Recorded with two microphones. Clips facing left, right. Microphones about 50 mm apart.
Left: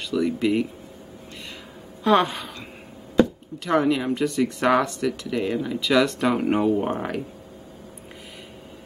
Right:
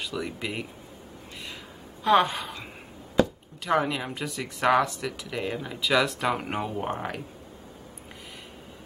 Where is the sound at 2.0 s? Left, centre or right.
Centre.